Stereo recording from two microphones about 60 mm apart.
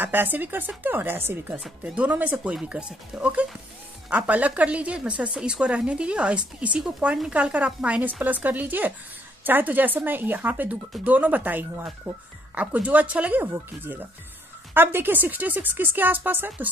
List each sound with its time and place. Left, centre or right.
0.0 s a woman's voice: right
13.4 s a woman's voice: right